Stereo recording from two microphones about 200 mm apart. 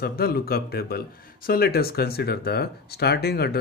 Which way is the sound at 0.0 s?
50° left (ahead or behind).